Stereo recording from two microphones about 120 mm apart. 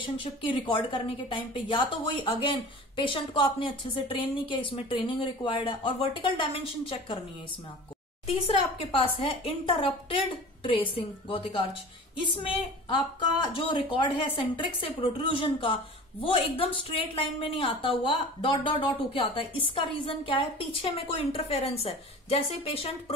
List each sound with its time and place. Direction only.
0.0 s a woman's voice: 45° left (ahead or behind)
8.3 s a woman's voice: 55° left (ahead or behind)